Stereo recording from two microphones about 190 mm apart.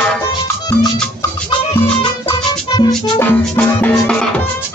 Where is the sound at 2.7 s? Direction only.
20° left (ahead or behind).